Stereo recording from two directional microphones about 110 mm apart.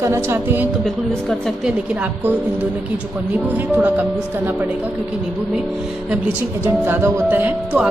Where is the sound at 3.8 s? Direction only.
15° right (ahead or behind).